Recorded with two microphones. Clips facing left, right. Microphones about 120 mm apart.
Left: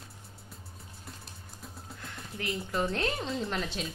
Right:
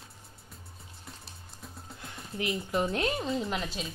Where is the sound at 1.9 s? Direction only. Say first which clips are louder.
Right 4 dB; 20° right (ahead or behind).